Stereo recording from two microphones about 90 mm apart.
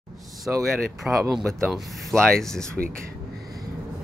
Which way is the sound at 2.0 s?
5° left (ahead or behind).